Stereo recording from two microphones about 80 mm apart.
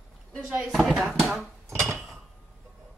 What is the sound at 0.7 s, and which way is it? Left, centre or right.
Speech, centre.